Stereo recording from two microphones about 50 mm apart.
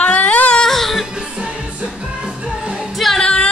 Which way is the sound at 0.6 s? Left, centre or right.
Centre.